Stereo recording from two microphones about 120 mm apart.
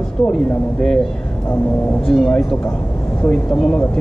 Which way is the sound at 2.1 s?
5° left (ahead or behind).